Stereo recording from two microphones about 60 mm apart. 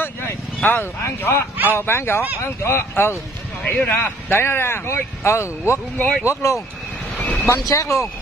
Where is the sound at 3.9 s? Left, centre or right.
Left.